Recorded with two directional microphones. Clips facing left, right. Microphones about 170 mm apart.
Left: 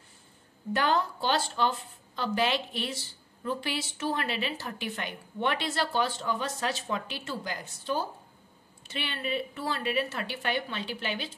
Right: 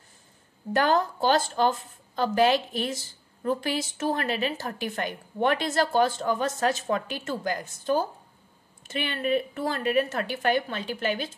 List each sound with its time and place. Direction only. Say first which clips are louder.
0.7 s a woman's voice: right 4 dB; 45° right (ahead or behind)